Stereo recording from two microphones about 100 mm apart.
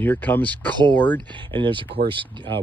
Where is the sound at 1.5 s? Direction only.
55° right (ahead or behind).